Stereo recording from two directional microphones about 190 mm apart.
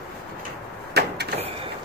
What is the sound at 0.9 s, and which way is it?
Vehicle, 60° right (ahead or behind).